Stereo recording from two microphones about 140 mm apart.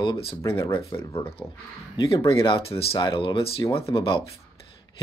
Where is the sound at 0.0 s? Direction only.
35° left (ahead or behind).